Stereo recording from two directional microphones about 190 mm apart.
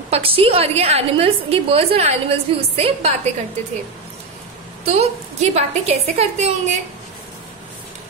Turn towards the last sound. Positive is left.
turn(degrees=-35)  # may be behind; listen again after turning